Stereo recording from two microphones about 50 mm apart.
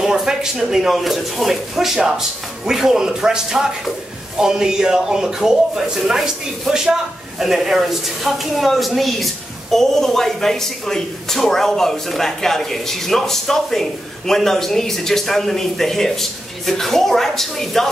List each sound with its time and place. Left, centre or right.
0.0 s speech: centre